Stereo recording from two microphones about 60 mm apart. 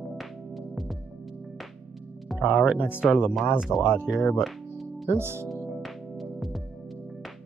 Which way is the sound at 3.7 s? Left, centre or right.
Left.